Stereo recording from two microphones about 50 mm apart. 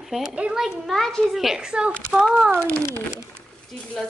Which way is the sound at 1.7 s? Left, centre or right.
Centre.